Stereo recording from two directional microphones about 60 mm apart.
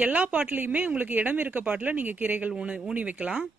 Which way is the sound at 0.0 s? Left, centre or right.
Right.